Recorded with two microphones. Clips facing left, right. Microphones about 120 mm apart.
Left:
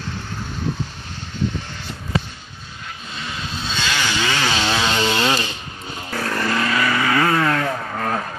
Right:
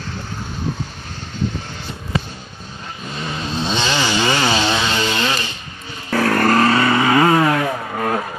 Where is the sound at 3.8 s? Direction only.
25° right (ahead or behind).